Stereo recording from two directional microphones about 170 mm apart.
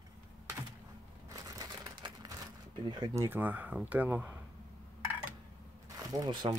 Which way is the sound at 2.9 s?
25° right (ahead or behind).